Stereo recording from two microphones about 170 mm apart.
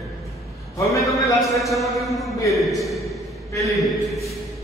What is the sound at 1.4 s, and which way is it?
A man's voice, centre (ahead or behind).